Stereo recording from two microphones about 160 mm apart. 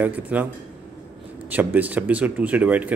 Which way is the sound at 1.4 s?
10° right (ahead or behind).